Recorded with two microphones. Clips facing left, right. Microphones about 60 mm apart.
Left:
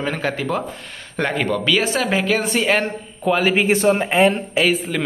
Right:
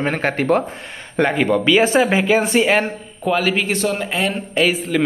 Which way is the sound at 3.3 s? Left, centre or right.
Centre.